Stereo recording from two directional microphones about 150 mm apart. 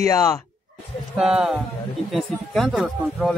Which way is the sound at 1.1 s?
5° right (ahead or behind).